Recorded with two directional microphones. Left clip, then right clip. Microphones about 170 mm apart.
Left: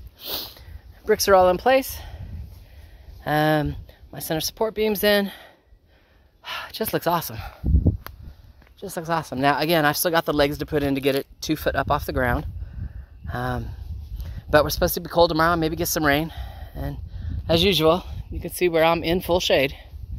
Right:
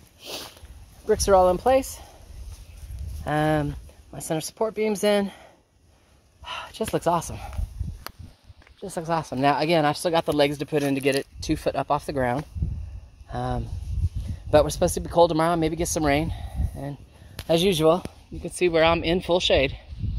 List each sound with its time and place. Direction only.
0.2 s sniff: 20° left (ahead or behind)
3.3 s speech: 15° left (ahead or behind)
8.7 s speech: 10° left (ahead or behind)